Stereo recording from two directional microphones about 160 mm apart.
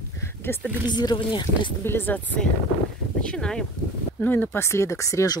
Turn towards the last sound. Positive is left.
turn(degrees=20)  # may be behind; listen again after turning